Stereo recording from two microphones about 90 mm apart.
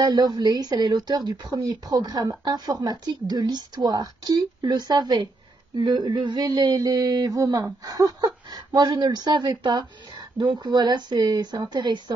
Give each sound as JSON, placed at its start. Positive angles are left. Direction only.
{"t": 0.0, "sound": "speech", "side_deg": -50}